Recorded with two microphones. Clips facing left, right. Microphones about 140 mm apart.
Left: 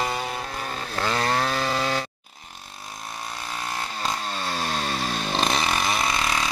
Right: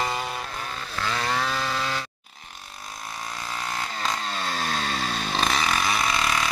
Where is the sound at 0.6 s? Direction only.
50° left (ahead or behind).